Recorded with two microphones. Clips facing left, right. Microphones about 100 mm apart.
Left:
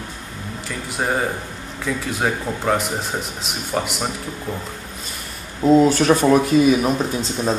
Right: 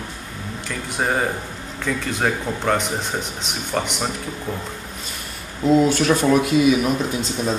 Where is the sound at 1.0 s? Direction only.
Centre (ahead or behind).